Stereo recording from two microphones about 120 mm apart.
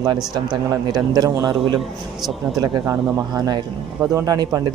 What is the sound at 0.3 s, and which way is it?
A man's voice, 35° right (ahead or behind).